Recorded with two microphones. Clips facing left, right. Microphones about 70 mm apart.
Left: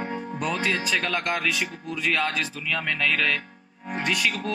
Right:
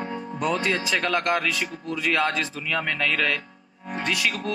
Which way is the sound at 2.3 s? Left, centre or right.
Right.